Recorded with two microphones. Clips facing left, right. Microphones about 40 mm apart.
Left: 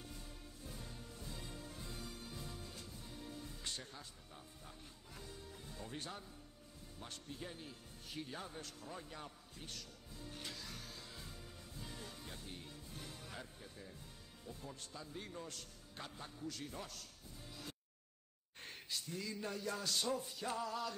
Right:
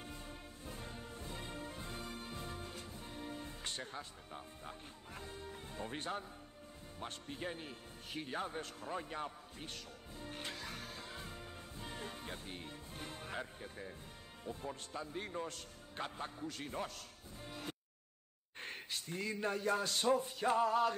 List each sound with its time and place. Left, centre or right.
0.0 s music: right
7.0 s a man's voice: right
17.5 s music: right
18.6 s speech: right